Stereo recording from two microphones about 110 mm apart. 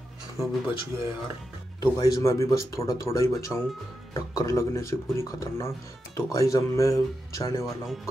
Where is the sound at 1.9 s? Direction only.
35° left (ahead or behind).